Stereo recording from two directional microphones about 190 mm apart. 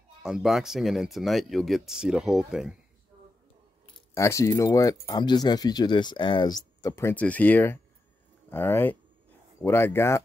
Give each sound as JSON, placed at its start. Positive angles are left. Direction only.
{"t": 0.2, "sound": "speech", "side_deg": 0}
{"t": 4.1, "sound": "speech", "side_deg": 15}